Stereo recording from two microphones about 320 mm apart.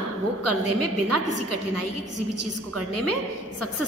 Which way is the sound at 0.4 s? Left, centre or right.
Right.